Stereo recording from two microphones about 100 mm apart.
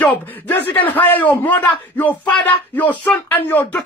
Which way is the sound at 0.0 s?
15° left (ahead or behind).